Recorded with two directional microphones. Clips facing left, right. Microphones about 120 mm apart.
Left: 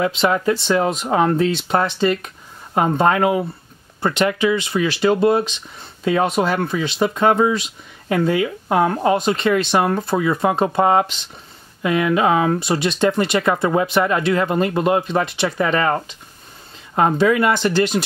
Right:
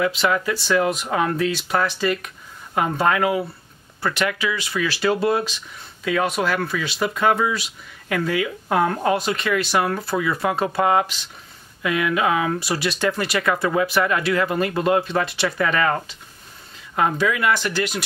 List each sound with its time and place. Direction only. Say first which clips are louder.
0.0 s speech: left 3 dB; 25° left (ahead or behind)